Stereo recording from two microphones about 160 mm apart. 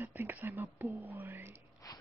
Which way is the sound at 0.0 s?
10° right (ahead or behind).